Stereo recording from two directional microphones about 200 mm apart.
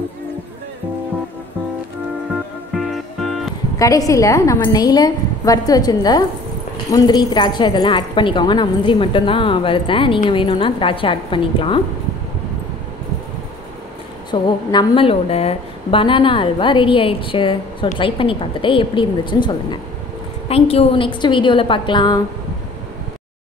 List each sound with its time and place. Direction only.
2.7 s music: centre (ahead or behind)
3.7 s a woman's voice: 15° left (ahead or behind)
14.3 s a woman's voice: 20° left (ahead or behind)